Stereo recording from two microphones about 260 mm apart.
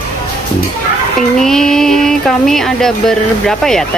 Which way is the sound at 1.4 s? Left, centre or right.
Centre.